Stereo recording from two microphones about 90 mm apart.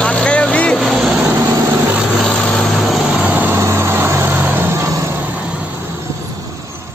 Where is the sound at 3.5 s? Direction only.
30° right (ahead or behind).